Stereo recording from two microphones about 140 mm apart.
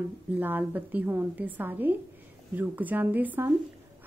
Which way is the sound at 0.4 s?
15° right (ahead or behind).